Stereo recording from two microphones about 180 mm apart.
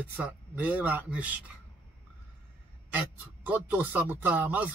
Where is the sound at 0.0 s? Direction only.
10° right (ahead or behind).